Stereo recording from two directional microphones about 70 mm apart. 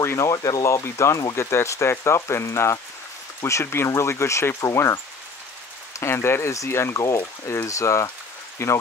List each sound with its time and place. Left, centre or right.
0.0 s speech: left
0.3 s speech: left
0.8 s speech: left